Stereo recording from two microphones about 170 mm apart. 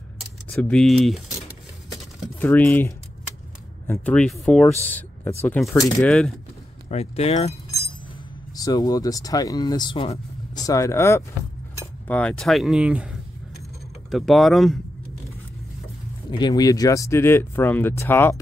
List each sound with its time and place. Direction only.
0.5 s speech: 5° left (ahead or behind)
2.4 s speech: 10° left (ahead or behind)
6.0 s speech: 5° left (ahead or behind)
6.9 s speech: 35° left (ahead or behind)
8.5 s speech: 20° left (ahead or behind)
10.6 s speech: 20° left (ahead or behind)
11.8 s cutlery: 10° left (ahead or behind)
14.1 s speech: centre (ahead or behind)
16.3 s speech: 25° left (ahead or behind)